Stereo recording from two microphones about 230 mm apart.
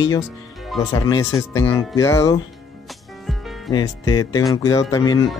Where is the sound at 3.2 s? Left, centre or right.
Centre.